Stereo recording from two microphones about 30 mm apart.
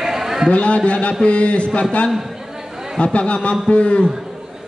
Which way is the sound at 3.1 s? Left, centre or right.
Left.